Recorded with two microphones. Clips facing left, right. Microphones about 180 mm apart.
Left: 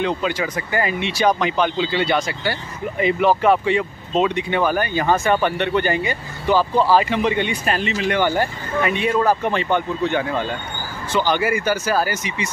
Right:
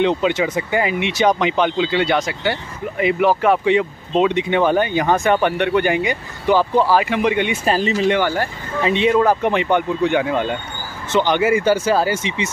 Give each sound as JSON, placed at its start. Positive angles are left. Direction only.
{"t": 0.0, "sound": "speech", "side_deg": -20}
{"t": 7.6, "sound": "speech", "side_deg": -35}
{"t": 8.2, "sound": "speech", "side_deg": 15}
{"t": 8.8, "sound": "speech", "side_deg": -25}